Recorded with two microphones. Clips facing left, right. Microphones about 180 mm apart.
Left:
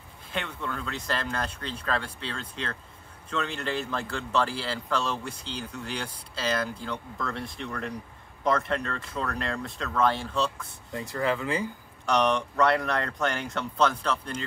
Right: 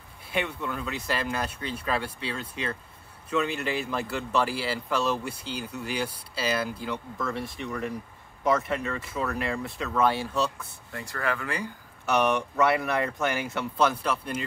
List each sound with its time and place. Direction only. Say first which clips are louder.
0.3 s speech: right 3 dB; 10° right (ahead or behind)
10.9 s speech: left 3 dB; 20° left (ahead or behind)
12.1 s speech: even; 5° right (ahead or behind)